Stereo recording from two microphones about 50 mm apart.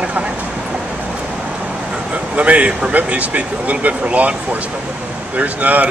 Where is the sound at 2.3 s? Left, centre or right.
Right.